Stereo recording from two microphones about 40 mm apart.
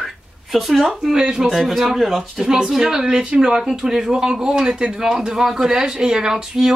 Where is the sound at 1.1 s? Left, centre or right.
Centre.